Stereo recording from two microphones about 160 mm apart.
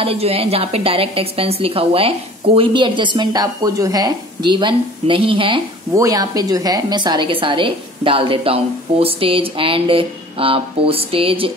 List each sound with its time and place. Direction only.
0.0 s a woman's voice: 35° right (ahead or behind)
5.9 s a woman's voice: 20° right (ahead or behind)